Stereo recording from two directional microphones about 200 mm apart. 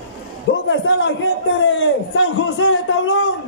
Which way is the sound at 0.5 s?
70° left (ahead or behind).